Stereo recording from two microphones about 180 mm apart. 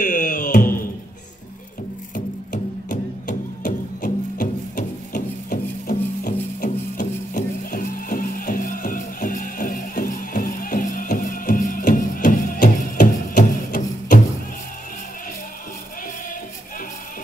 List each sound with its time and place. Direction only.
0.0 s music: 45° left (ahead or behind)
2.1 s music: 45° left (ahead or behind)